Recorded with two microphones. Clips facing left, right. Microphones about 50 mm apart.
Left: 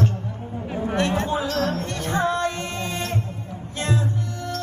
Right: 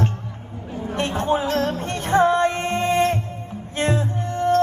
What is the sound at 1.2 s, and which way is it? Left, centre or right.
Speech, right.